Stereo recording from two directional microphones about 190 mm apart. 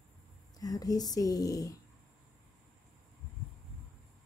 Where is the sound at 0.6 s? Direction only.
20° left (ahead or behind).